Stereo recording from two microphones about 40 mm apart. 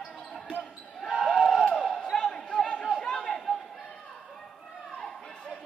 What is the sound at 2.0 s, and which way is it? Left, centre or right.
Basketball bounce, centre.